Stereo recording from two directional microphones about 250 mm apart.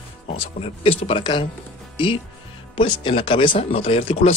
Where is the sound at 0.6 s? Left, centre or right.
Left.